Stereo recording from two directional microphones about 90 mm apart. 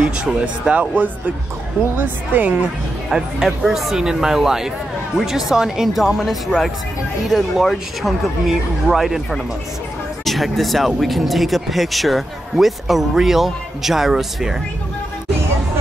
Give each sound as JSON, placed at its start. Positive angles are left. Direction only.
{"t": 0.0, "sound": "a woman's voice", "side_deg": -10}
{"t": 3.1, "sound": "speech", "side_deg": -5}